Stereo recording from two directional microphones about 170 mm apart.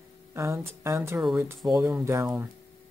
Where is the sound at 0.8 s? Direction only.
15° right (ahead or behind).